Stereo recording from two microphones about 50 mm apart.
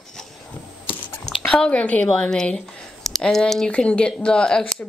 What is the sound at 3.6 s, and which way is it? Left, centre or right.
Speech, left.